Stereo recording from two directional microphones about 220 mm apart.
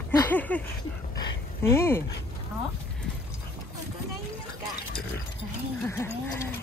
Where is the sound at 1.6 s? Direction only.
10° left (ahead or behind).